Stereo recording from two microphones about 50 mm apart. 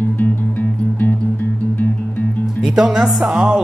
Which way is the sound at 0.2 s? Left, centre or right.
Left.